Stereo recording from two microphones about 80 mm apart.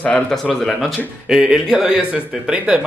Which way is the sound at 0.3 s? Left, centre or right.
Centre.